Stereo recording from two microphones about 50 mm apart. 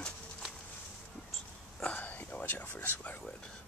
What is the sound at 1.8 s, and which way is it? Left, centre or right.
Speech, left.